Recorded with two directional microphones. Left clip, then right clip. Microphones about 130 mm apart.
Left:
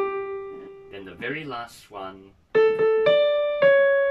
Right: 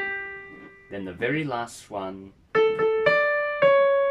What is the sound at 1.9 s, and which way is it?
Music, 60° right (ahead or behind).